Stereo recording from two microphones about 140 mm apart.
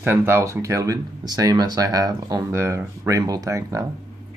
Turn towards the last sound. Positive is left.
turn(degrees=-25)  # may be behind; listen again after turning